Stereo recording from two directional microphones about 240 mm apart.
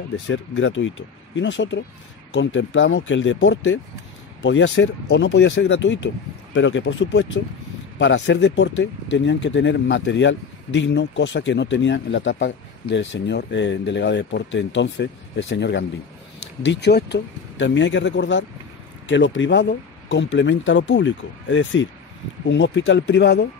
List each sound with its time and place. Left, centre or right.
0.3 s speech: left